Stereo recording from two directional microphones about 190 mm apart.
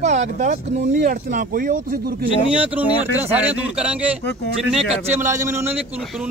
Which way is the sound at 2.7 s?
10° right (ahead or behind).